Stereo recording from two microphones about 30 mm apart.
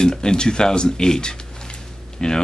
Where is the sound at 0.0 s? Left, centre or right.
Left.